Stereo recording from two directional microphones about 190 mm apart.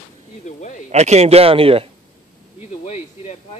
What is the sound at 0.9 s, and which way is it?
Speech, 35° right (ahead or behind).